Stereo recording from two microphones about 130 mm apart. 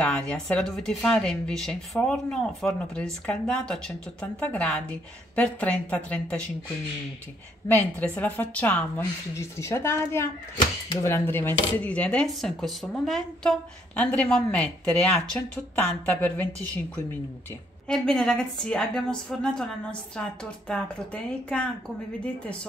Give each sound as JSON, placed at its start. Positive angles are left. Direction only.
{"t": 0.0, "sound": "speech", "side_deg": 10}
{"t": 7.6, "sound": "speech", "side_deg": 15}